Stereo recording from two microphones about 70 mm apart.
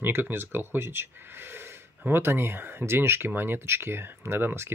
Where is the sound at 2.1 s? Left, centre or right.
Right.